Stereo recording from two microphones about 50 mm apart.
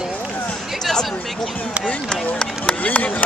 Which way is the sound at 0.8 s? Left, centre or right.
Centre.